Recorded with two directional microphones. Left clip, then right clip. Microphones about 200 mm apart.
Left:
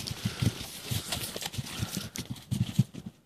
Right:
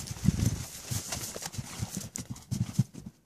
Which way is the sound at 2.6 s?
5° left (ahead or behind).